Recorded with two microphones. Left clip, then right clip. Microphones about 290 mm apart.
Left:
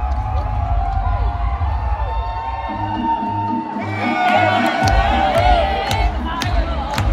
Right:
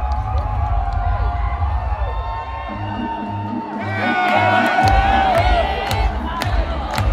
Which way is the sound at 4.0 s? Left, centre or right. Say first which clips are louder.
Left 1 dB; centre.